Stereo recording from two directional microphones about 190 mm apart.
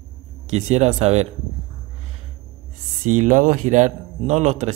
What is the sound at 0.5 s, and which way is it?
Speech, 35° right (ahead or behind).